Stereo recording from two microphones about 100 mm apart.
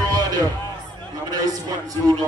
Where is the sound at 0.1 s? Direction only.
40° right (ahead or behind).